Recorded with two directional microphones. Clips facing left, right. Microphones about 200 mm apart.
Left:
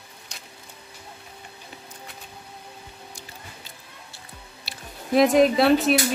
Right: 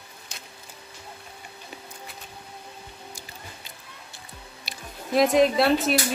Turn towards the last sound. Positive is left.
turn(degrees=0)  # may be behind; listen again after turning